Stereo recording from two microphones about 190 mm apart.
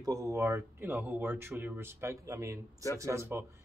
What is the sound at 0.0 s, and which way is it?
Speech, 15° right (ahead or behind).